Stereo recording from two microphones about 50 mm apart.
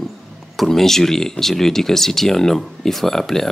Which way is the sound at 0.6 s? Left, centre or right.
Centre.